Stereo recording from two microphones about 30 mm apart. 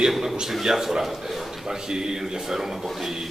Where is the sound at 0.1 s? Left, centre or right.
Centre.